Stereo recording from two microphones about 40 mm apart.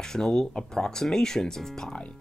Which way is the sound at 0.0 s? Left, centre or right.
Centre.